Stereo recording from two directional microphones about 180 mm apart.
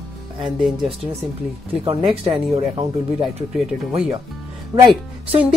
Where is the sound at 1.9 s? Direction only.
30° right (ahead or behind).